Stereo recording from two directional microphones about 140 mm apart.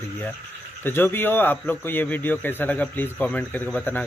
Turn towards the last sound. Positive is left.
turn(degrees=10)  # may be behind; listen again after turning